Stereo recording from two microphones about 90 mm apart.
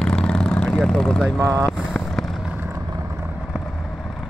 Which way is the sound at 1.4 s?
30° right (ahead or behind).